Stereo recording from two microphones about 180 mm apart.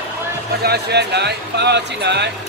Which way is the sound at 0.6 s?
65° right (ahead or behind).